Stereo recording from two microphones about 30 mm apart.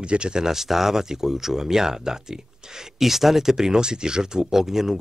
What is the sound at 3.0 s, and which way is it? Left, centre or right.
Speech, centre.